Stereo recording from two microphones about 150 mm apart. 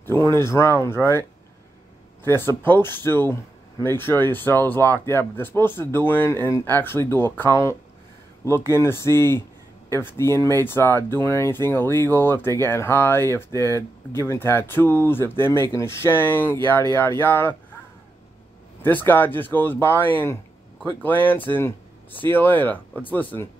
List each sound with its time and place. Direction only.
0.0 s speech: 15° left (ahead or behind)
2.2 s speech: 15° left (ahead or behind)
18.8 s speech: 10° left (ahead or behind)